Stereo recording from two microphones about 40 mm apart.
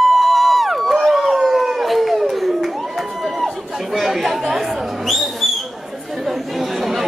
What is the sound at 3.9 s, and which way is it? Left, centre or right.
Chatter, centre.